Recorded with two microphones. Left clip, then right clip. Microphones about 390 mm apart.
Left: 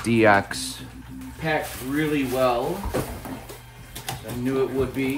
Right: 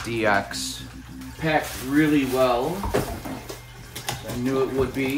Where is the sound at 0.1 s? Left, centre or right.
Left.